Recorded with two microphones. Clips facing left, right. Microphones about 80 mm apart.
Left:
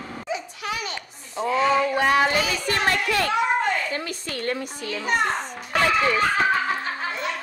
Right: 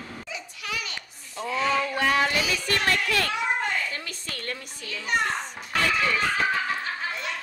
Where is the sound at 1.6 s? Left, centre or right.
Centre.